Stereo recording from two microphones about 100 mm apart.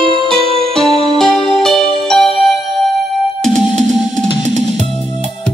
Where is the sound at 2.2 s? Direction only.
65° left (ahead or behind).